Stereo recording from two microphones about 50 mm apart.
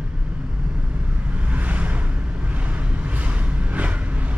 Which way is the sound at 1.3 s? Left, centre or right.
Right.